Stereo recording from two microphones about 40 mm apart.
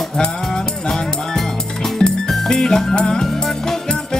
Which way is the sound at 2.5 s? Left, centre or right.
Centre.